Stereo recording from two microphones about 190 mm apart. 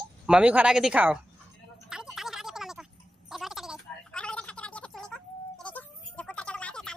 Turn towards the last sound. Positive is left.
turn(degrees=5)  # may be behind; listen again after turning